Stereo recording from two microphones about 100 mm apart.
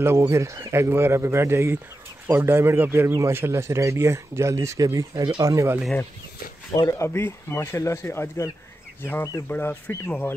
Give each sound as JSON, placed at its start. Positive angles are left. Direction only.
{"t": 0.0, "sound": "a man's voice", "side_deg": -25}
{"t": 6.7, "sound": "speech", "side_deg": 35}
{"t": 9.5, "sound": "speech", "side_deg": 20}